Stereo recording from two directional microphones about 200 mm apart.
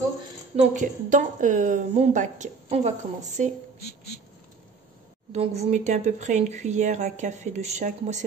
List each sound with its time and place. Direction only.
0.7 s speech: 40° right (ahead or behind)
5.3 s speech: 35° right (ahead or behind)